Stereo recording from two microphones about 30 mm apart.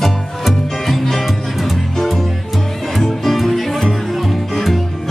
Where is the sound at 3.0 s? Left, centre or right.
Centre.